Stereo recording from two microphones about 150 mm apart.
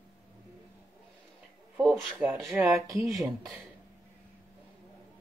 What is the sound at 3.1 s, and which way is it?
Speech, centre (ahead or behind).